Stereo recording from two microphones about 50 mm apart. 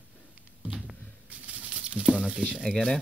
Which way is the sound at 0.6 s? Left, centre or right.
Centre.